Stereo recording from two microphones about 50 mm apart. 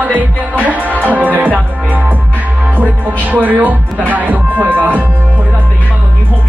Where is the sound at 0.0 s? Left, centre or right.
Right.